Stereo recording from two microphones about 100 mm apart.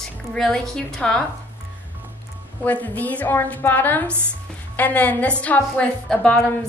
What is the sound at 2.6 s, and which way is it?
A woman's voice, 15° left (ahead or behind).